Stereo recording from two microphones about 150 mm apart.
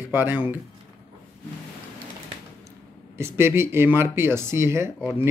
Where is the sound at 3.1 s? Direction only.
15° right (ahead or behind).